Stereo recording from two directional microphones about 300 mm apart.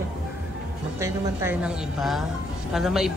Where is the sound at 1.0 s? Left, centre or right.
Centre.